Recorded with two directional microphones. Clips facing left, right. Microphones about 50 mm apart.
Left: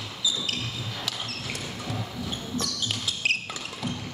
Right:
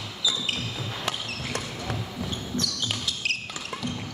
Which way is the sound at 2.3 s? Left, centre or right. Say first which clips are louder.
Right 1 dB; centre.